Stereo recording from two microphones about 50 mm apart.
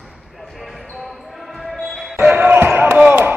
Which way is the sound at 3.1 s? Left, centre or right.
Right.